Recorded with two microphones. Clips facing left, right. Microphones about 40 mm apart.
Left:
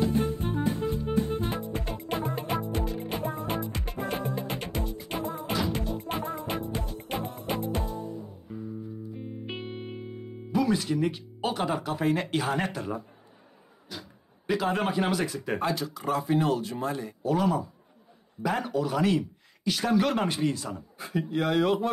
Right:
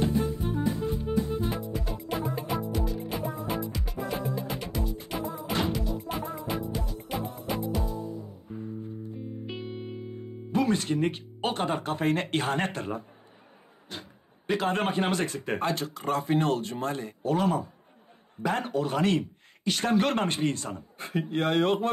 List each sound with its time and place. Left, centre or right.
0.1 s music: left
9.2 s music: left
10.5 s speech: right
13.9 s a sound: right
14.5 s speech: right
15.7 s speech: right
20.4 s speech: right
21.4 s speech: right